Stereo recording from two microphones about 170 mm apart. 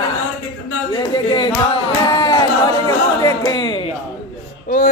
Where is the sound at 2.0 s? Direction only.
25° left (ahead or behind).